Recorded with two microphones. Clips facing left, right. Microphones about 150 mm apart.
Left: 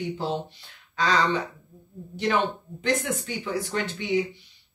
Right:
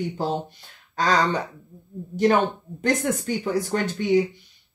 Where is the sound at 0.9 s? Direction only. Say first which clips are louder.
Right 2 dB; 45° right (ahead or behind).